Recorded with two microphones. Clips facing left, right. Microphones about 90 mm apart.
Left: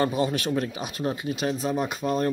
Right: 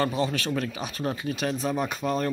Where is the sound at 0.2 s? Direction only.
20° left (ahead or behind).